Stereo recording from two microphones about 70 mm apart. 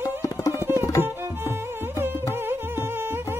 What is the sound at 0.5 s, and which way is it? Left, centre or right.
Tabla, right.